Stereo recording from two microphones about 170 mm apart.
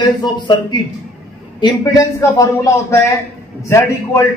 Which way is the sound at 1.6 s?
20° left (ahead or behind).